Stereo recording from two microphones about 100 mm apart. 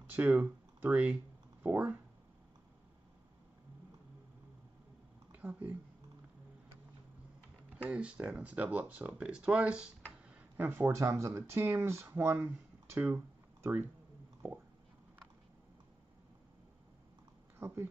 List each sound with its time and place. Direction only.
0.0 s speech: 15° right (ahead or behind)
5.4 s speech: 20° right (ahead or behind)
7.7 s speech: 15° right (ahead or behind)
10.3 s a sound: 20° right (ahead or behind)
11.0 s speech: 30° right (ahead or behind)
13.1 s a sound: 25° right (ahead or behind)
14.4 s speech: 20° right (ahead or behind)
17.6 s speech: 25° right (ahead or behind)